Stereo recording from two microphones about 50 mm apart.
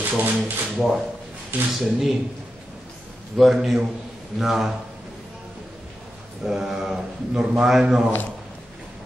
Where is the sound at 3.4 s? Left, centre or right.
Centre.